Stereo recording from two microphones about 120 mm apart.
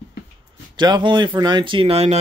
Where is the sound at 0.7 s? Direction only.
40° right (ahead or behind); by 2.1 s 55° right (ahead or behind).